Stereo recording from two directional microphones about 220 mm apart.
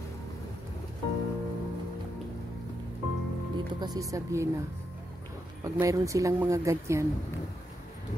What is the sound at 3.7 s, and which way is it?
Speech, 20° right (ahead or behind).